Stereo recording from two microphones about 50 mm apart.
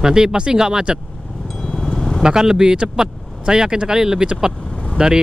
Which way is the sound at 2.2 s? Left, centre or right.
Centre.